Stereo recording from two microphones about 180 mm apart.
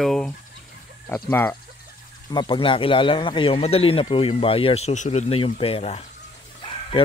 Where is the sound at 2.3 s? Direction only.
25° left (ahead or behind).